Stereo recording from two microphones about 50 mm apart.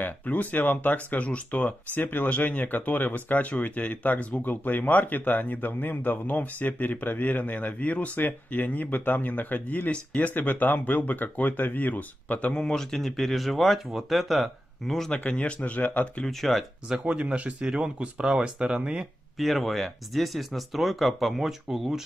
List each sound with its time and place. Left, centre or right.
0.0 s speech: left
12.5 s speech: centre
15.1 s speech: left
16.3 s speech: centre
17.0 s speech: right
19.3 s speech: centre